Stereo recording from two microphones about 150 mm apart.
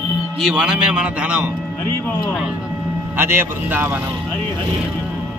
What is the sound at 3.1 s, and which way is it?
Speech, 15° right (ahead or behind).